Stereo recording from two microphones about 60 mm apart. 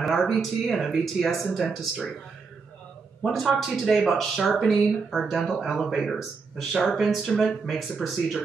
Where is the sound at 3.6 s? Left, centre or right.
Centre.